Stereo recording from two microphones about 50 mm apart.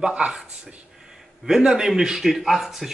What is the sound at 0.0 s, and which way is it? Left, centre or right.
Speech, centre.